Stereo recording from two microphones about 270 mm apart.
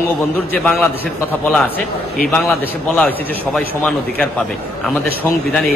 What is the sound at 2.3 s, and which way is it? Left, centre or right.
A man's voice, centre.